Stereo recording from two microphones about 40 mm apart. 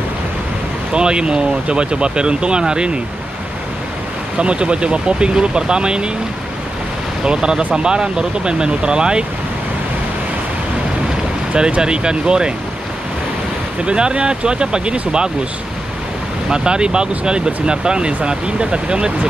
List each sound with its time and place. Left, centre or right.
0.9 s speech: right
4.4 s speech: right
7.2 s speech: right
11.5 s speech: right
13.8 s speech: right
16.4 s speech: right
17.1 s speech: right